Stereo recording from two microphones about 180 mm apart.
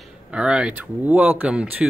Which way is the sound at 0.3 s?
5° right (ahead or behind).